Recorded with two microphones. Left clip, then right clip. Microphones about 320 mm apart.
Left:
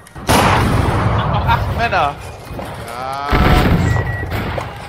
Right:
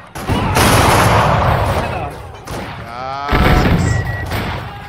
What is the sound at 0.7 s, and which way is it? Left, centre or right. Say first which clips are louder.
Music: right 7 dB; right.